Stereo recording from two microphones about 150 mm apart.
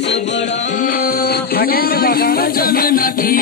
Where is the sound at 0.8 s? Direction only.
80° left.